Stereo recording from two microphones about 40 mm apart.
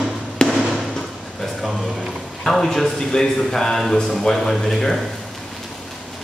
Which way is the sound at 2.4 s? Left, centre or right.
Centre.